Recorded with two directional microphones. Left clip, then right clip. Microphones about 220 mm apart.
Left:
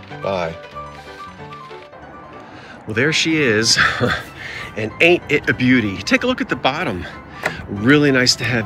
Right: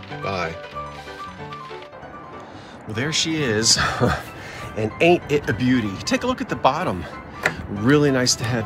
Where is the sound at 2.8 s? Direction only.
10° right (ahead or behind).